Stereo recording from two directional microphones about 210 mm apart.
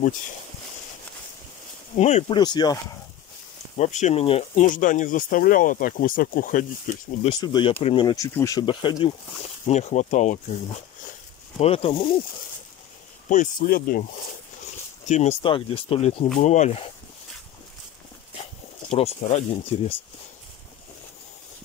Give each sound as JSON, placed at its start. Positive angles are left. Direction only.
{"t": 2.0, "sound": "speech", "side_deg": 30}
{"t": 2.3, "sound": "speech", "side_deg": 20}
{"t": 3.7, "sound": "speech", "side_deg": 35}
{"t": 7.2, "sound": "speech", "side_deg": 20}
{"t": 11.6, "sound": "speech", "side_deg": 25}
{"t": 13.3, "sound": "speech", "side_deg": 40}
{"t": 15.0, "sound": "speech", "side_deg": 30}
{"t": 18.9, "sound": "speech", "side_deg": 30}